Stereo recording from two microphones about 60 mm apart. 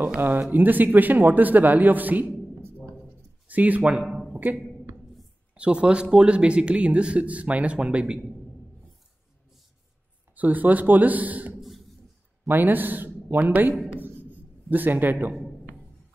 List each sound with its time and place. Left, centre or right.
0.2 s speech: right
3.4 s speech: right
4.0 s a sound: centre
5.5 s speech: centre
10.3 s speech: right